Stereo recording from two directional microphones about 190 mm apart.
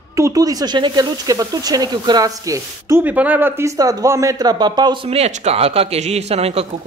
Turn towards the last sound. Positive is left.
turn(degrees=-35)  # may be behind; listen again after turning